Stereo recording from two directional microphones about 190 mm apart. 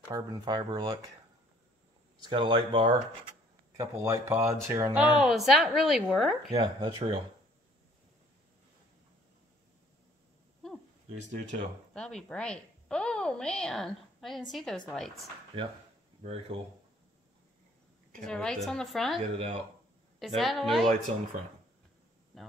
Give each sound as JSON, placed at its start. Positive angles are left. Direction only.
{"t": 0.1, "sound": "speech", "side_deg": -25}
{"t": 2.2, "sound": "speech", "side_deg": -25}
{"t": 3.7, "sound": "speech", "side_deg": -15}
{"t": 6.5, "sound": "speech", "side_deg": -20}
{"t": 11.1, "sound": "speech", "side_deg": -40}
{"t": 11.9, "sound": "a woman's voice", "side_deg": 5}
{"t": 16.2, "sound": "speech", "side_deg": -30}
{"t": 18.2, "sound": "speech", "side_deg": 5}
{"t": 19.3, "sound": "speech", "side_deg": -35}
{"t": 20.2, "sound": "speech", "side_deg": 0}
{"t": 22.3, "sound": "a sound", "side_deg": 0}